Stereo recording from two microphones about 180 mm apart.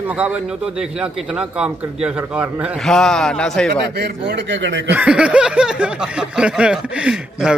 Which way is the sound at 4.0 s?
75° right (ahead or behind).